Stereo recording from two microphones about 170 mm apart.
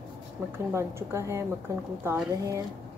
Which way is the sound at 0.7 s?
15° right (ahead or behind).